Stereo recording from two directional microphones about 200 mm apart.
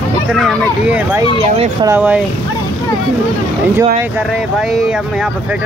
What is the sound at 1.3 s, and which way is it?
Speech, 25° right (ahead or behind).